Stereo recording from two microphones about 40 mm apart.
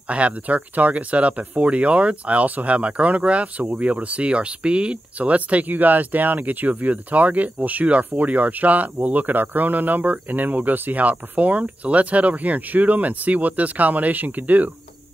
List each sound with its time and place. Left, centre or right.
0.1 s speech: right